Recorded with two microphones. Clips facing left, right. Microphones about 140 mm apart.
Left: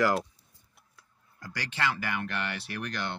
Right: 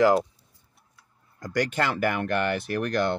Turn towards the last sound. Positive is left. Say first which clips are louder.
# right 10 dB
turn(degrees=-45)  # may be behind; listen again after turning